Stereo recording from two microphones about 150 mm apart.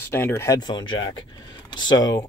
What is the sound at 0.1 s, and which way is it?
Speech, 15° left (ahead or behind).